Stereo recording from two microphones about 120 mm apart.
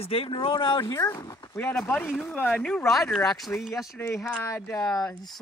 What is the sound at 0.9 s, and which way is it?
Speech, 30° left (ahead or behind).